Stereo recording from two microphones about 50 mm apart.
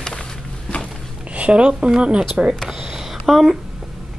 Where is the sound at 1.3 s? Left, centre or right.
Right.